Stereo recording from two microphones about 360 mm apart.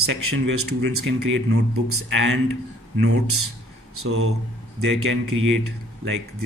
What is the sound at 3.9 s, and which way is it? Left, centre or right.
Speech, right.